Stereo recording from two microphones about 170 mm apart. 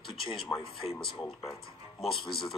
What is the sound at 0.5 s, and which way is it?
Speech, 10° left (ahead or behind).